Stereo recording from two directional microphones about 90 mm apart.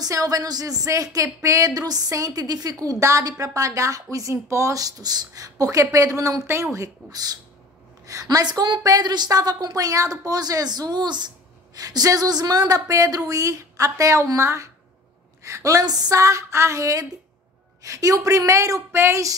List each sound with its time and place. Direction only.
0.0 s a woman's voice: 40° right (ahead or behind)
8.8 s a woman's voice: 45° right (ahead or behind)